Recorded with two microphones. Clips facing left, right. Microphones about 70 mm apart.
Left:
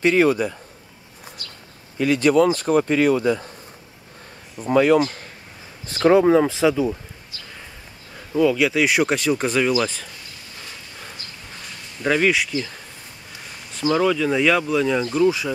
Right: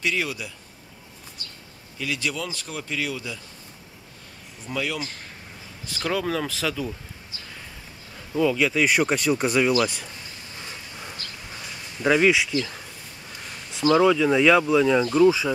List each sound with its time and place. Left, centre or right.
0.0 s speech: left
2.0 s speech: left
4.6 s speech: left; by 6.9 s centre
8.3 s speech: centre
12.0 s speech: centre
12.5 s speech: left
13.9 s speech: centre